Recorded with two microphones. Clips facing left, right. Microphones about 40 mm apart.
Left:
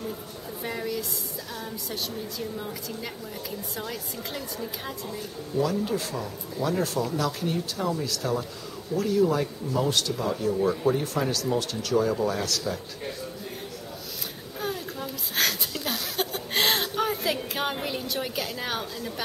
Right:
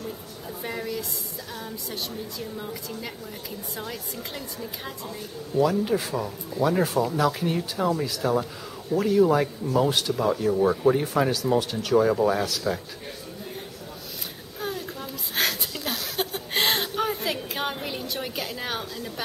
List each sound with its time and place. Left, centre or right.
0.7 s a woman's voice: centre
14.6 s a sound: centre
17.8 s a woman's voice: centre